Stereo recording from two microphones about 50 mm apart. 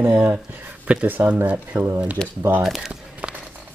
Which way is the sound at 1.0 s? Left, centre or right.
Right.